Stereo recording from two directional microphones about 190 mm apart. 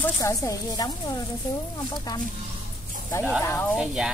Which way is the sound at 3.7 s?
5° right (ahead or behind).